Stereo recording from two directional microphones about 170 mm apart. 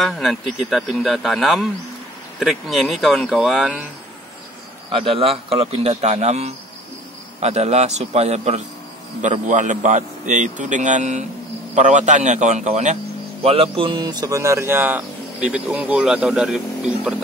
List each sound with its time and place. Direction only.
0.0 s speech: centre (ahead or behind)
4.9 s a man's voice: 35° right (ahead or behind); by 17.1 s 5° right (ahead or behind)